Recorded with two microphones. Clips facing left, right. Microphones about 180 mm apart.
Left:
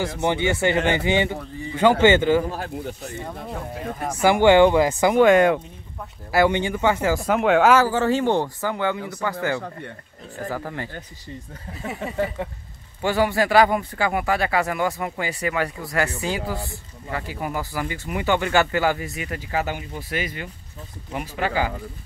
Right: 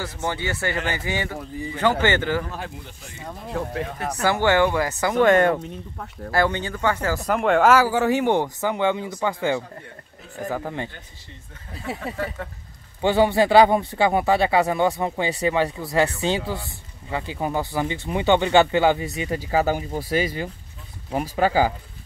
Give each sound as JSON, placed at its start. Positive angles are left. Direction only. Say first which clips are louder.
{"t": 0.0, "sound": "a man's voice", "louder": "left 5 dB", "side_deg": 20}
{"t": 2.5, "sound": "speech", "louder": "left 4 dB", "side_deg": 40}
{"t": 3.3, "sound": "speech", "louder": "right 7 dB", "side_deg": 0}
{"t": 4.3, "sound": "speech", "louder": "left 5 dB", "side_deg": 15}
{"t": 5.2, "sound": "speech", "louder": "left 1 dB", "side_deg": 0}
{"t": 6.3, "sound": "speech", "louder": "left 3 dB", "side_deg": 15}
{"t": 7.8, "sound": "speech", "louder": "even", "side_deg": -10}
{"t": 12.0, "sound": "speech", "louder": "left 6 dB", "side_deg": 15}
{"t": 13.0, "sound": "speech", "louder": "right 3 dB", "side_deg": -25}